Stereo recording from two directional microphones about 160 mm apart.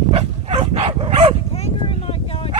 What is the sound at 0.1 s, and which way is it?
Dog, 40° right (ahead or behind).